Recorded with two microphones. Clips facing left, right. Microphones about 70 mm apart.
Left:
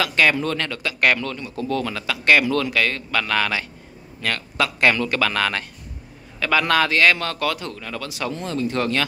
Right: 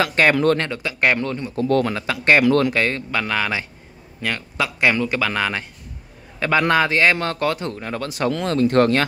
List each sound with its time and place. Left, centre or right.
0.0 s a man's voice: right
0.6 s speech: right
1.6 s speech: right
2.0 s a man's voice: right; by 5.7 s centre
6.7 s a man's voice: right
8.3 s speech: right
8.5 s speech: right